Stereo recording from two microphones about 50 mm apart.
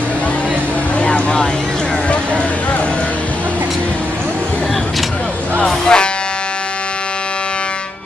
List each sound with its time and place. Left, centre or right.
1.0 s vehicle: left
5.7 s music: centre